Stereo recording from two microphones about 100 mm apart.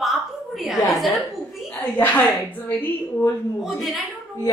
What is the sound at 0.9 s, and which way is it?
Speech, centre (ahead or behind).